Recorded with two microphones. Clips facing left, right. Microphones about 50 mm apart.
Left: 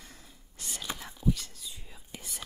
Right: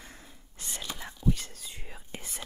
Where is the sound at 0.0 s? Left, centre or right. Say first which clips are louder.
Right 3 dB; right.